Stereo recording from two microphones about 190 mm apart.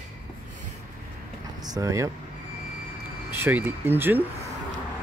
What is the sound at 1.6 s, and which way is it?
Speech, 20° right (ahead or behind).